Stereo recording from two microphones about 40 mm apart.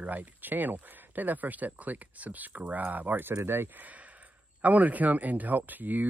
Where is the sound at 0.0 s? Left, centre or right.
Right.